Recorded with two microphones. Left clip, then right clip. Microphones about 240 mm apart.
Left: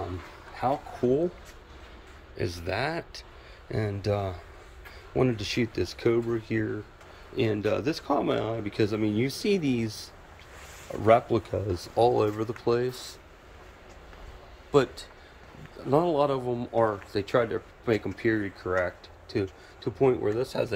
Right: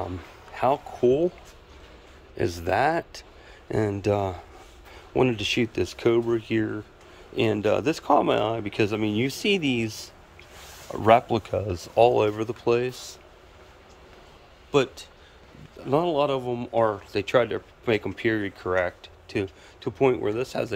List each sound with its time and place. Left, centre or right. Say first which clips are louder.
0.6 s speech: right 5 dB; centre
2.3 s speech: right 7 dB; centre
14.7 s speech: right 1 dB; centre